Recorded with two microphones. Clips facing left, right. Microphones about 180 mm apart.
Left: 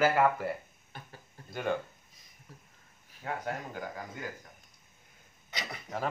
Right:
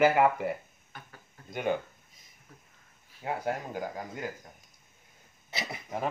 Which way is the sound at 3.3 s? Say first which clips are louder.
Right 4 dB; 30° right (ahead or behind).